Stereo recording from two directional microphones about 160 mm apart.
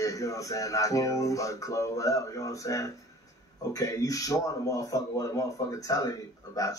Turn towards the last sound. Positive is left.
turn(degrees=20)  # may be behind; listen again after turning